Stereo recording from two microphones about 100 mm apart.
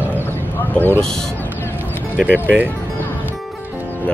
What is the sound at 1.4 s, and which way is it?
Music, 20° left (ahead or behind).